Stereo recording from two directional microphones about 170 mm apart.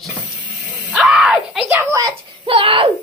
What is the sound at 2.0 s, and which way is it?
Speech, 30° right (ahead or behind).